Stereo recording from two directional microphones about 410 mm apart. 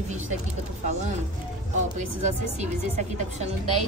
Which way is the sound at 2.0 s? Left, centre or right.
Centre.